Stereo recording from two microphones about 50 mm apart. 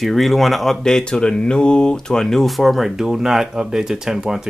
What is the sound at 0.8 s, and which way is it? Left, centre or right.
Speech, centre.